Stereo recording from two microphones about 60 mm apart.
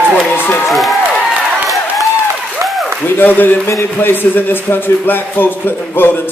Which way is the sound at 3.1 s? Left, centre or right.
Left.